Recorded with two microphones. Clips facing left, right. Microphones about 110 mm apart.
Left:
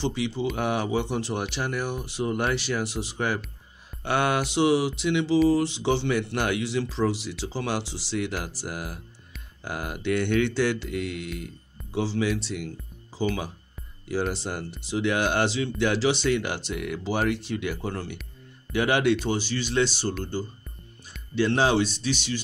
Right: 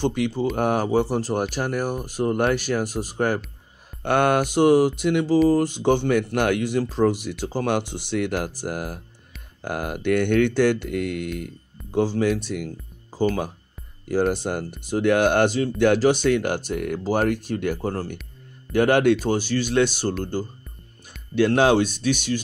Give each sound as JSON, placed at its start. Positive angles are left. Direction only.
{"t": 0.0, "sound": "speech", "side_deg": -50}
{"t": 21.4, "sound": "speech", "side_deg": -55}